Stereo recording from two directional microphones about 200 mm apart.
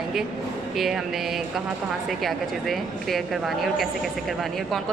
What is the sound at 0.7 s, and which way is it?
A woman's voice, centre (ahead or behind).